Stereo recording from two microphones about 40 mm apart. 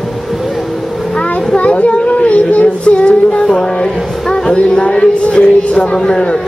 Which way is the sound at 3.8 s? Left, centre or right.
Left.